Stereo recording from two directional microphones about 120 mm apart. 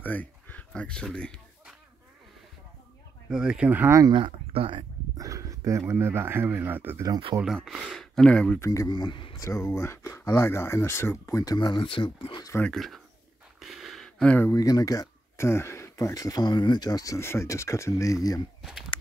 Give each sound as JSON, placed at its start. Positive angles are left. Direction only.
{"t": 0.0, "sound": "speech", "side_deg": 15}
{"t": 3.3, "sound": "speech", "side_deg": -5}
{"t": 4.1, "sound": "speech", "side_deg": -50}
{"t": 5.1, "sound": "speech", "side_deg": -25}
{"t": 7.4, "sound": "speech", "side_deg": 0}
{"t": 8.5, "sound": "speech", "side_deg": 25}
{"t": 9.4, "sound": "speech", "side_deg": 25}
{"t": 11.5, "sound": "speech", "side_deg": 40}
{"t": 12.6, "sound": "speech", "side_deg": 0}
{"t": 13.6, "sound": "a sound", "side_deg": 0}
{"t": 14.4, "sound": "speech", "side_deg": 30}
{"t": 18.6, "sound": "speech", "side_deg": -5}